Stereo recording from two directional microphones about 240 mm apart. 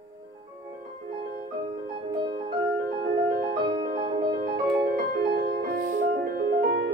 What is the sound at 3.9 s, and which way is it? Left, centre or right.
Music, right.